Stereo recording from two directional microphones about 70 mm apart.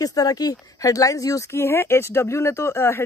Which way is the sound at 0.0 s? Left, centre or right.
Left.